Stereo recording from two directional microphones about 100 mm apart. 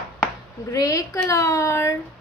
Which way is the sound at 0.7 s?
35° left (ahead or behind).